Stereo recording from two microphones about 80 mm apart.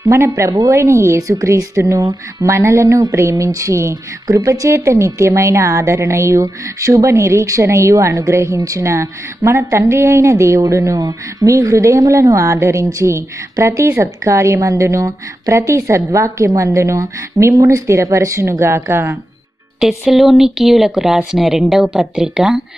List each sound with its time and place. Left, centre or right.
0.0 s a woman's voice: right
19.8 s speech: centre